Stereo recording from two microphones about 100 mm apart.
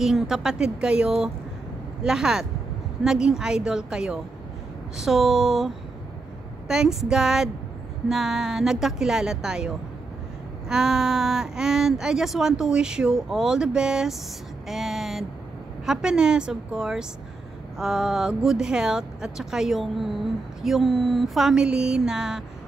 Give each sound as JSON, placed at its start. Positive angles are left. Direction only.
{"t": 0.0, "sound": "speech", "side_deg": -5}
{"t": 6.7, "sound": "speech", "side_deg": -5}
{"t": 10.7, "sound": "speech", "side_deg": -5}
{"t": 14.7, "sound": "vehicle", "side_deg": 0}
{"t": 15.8, "sound": "speech", "side_deg": -5}